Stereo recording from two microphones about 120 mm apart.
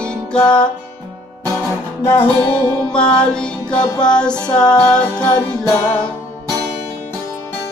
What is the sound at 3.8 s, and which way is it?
Music, 35° left (ahead or behind).